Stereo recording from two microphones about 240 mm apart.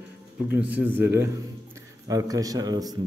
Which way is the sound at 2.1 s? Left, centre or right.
Centre.